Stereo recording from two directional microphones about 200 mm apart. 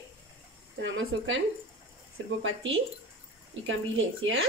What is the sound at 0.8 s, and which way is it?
Speech, 70° right (ahead or behind).